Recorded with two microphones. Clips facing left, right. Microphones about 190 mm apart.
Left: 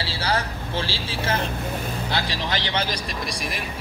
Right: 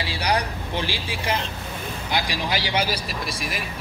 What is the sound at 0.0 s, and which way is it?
Vehicle, 15° right (ahead or behind).